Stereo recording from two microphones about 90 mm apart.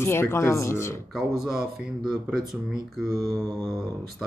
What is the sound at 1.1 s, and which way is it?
Speech, centre (ahead or behind).